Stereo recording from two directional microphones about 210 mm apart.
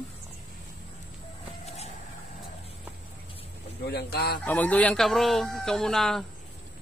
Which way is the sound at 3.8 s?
50° left (ahead or behind).